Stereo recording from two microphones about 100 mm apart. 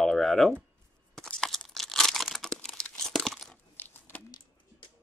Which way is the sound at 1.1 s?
10° left (ahead or behind).